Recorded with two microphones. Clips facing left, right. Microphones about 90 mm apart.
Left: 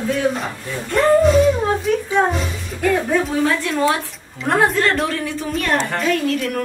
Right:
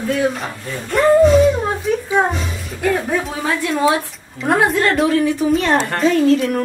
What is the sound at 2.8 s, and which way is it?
A woman's voice, 10° right (ahead or behind).